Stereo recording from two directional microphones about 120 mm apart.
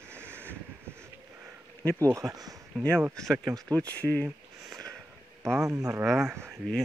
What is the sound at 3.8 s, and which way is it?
Speech, 15° left (ahead or behind).